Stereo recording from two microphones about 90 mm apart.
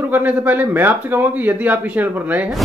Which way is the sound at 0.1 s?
20° right (ahead or behind).